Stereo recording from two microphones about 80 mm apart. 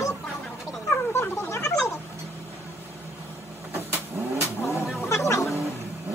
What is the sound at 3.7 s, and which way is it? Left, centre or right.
Vehicle, right.